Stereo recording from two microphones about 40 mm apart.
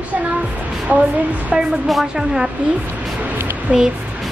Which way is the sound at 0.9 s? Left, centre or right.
Right.